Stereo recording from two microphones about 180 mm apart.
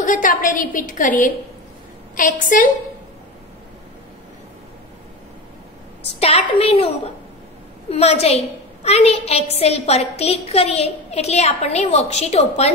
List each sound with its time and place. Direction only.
0.0 s a woman's voice: 45° left (ahead or behind)
6.2 s a woman's voice: 35° left (ahead or behind)